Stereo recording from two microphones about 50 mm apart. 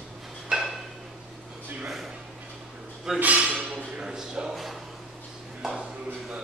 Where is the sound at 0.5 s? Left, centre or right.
Centre.